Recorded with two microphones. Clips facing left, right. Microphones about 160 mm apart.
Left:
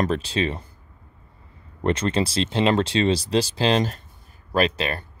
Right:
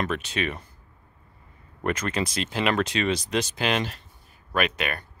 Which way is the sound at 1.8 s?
30° left (ahead or behind).